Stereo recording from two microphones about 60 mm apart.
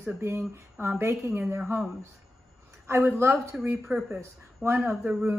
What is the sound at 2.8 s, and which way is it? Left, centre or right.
Speech, right.